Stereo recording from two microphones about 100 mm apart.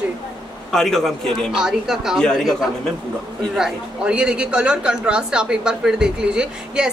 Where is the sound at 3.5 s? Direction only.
5° right (ahead or behind).